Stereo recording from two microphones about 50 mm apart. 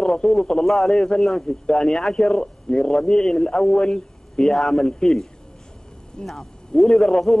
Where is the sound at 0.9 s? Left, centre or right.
Centre.